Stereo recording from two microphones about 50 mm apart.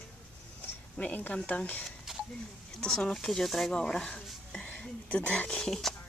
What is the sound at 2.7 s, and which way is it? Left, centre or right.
Speech, centre.